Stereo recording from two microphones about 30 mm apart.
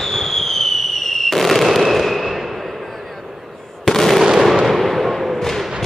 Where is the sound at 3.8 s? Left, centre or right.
Centre.